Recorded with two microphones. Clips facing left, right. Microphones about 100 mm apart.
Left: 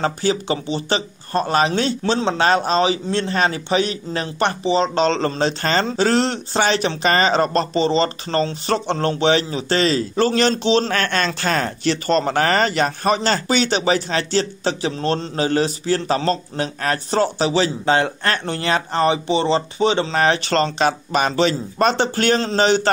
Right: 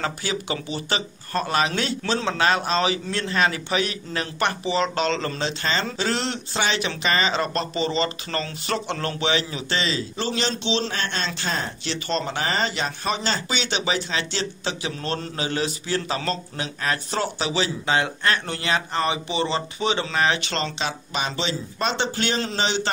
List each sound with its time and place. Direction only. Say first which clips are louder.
0.0 s a man's voice: left 7 dB; 35° left (ahead or behind)
9.8 s speech: left 10 dB; 50° left (ahead or behind)
10.9 s speech: left 7 dB; 60° left (ahead or behind)